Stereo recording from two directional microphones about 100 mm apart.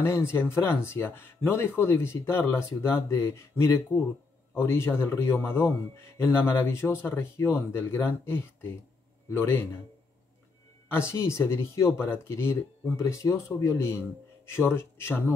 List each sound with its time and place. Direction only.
0.0 s speech: 25° left (ahead or behind)
10.9 s speech: 25° left (ahead or behind)